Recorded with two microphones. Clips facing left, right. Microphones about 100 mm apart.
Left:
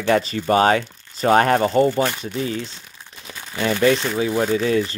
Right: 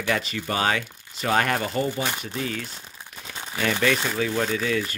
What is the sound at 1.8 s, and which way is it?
Speech, 50° left (ahead or behind).